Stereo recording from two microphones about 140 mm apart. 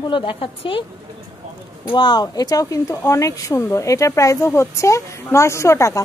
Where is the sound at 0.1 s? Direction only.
40° left (ahead or behind).